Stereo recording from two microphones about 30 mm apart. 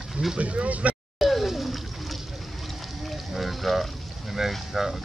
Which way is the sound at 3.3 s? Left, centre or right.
Centre.